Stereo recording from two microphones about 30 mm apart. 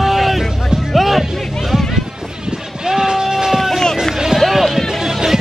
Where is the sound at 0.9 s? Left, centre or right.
Centre.